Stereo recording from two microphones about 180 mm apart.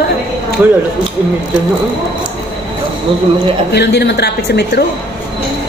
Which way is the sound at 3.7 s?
65° left (ahead or behind).